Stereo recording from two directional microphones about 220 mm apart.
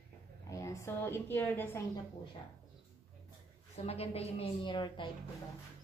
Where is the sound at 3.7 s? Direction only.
30° left (ahead or behind).